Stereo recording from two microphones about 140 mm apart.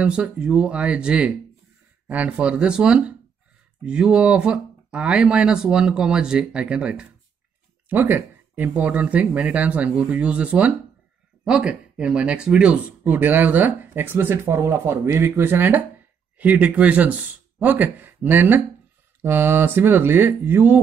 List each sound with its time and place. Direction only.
0.0 s speech: 5° right (ahead or behind)